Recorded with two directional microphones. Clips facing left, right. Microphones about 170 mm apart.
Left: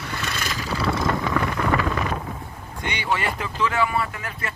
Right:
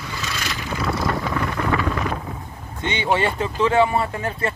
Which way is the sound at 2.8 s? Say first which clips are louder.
Right 4 dB; 25° right (ahead or behind).